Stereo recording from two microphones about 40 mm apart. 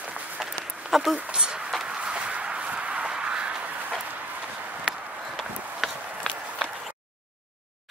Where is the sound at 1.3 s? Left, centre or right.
Right.